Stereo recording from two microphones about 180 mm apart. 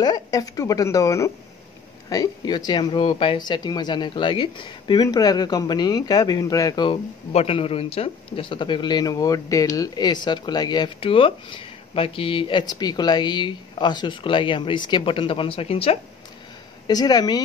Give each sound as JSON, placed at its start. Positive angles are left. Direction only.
{"t": 0.0, "sound": "speech", "side_deg": 20}
{"t": 16.8, "sound": "speech", "side_deg": 20}